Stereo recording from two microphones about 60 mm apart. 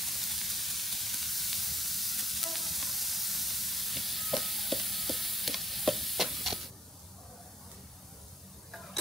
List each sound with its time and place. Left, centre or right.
0.0 s sizzle: centre